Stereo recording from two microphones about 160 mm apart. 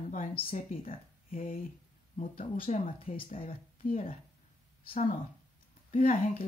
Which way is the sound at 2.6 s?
55° left (ahead or behind).